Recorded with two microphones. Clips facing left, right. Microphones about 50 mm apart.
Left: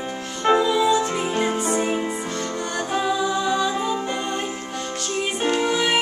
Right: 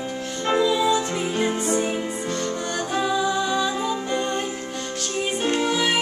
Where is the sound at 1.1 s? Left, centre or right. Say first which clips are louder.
Left 1 dB; centre.